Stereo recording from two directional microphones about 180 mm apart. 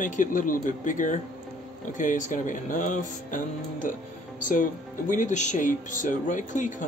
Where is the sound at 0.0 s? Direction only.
45° left (ahead or behind).